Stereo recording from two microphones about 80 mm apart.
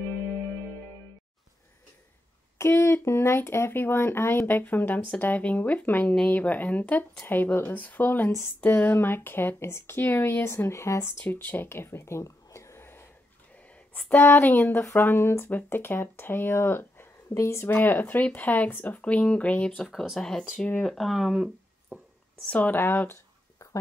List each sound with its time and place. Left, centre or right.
2.6 s speech: left
13.9 s speech: left
20.9 s speech: centre
22.5 s speech: centre
23.6 s a sound: left